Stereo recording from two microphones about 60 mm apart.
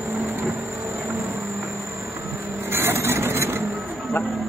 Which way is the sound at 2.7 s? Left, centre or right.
Right.